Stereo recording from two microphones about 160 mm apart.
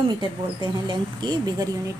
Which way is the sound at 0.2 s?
30° right (ahead or behind).